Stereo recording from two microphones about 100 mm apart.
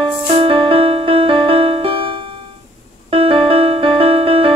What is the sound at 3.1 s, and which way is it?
Music, 70° right (ahead or behind).